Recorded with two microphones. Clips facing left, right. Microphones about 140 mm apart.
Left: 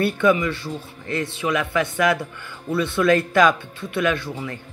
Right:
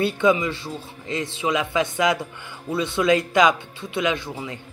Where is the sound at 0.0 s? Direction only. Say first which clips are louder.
Left 1 dB; 20° right (ahead or behind).